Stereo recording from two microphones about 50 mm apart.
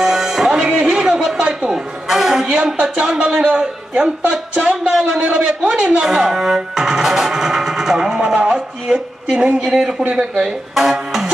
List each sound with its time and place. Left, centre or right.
0.0 s music: centre
0.8 s a sound: centre
1.7 s music: centre
2.4 s a man's voice: centre
4.9 s a man's voice: centre